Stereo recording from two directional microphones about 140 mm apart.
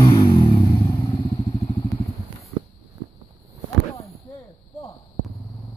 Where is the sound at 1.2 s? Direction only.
30° left (ahead or behind).